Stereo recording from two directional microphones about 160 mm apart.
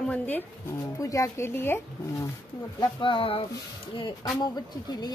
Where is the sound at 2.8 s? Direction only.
30° left (ahead or behind).